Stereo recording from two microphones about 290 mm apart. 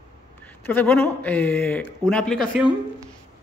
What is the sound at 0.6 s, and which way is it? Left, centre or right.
Speech, centre.